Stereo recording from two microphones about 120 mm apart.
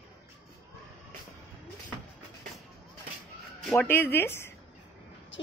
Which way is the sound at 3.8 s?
20° left (ahead or behind).